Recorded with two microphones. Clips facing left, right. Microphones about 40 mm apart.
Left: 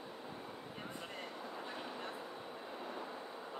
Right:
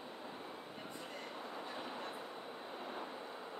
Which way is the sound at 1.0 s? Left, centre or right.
Left.